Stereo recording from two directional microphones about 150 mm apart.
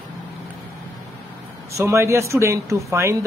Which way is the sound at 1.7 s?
20° right (ahead or behind).